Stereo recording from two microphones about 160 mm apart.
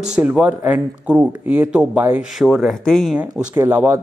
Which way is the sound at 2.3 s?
Centre (ahead or behind).